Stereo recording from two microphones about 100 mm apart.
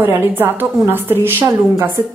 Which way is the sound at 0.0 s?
20° right (ahead or behind).